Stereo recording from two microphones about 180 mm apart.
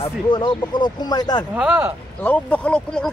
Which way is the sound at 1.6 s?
10° right (ahead or behind).